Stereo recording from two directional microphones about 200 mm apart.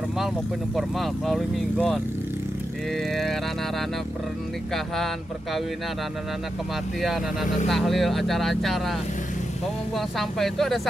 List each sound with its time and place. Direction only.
0.7 s speech: centre (ahead or behind)
4.7 s speech: centre (ahead or behind)
7.6 s speech: centre (ahead or behind)
9.9 s speech: centre (ahead or behind)